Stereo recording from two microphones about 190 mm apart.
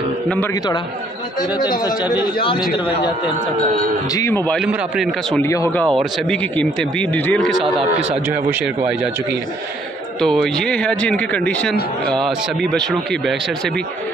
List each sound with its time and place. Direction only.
1.6 s a man's voice: 20° left (ahead or behind)
4.1 s speech: 15° left (ahead or behind)
4.6 s speech: centre (ahead or behind)
5.4 s speech: 15° left (ahead or behind)
8.3 s speech: 10° right (ahead or behind)
10.2 s speech: centre (ahead or behind)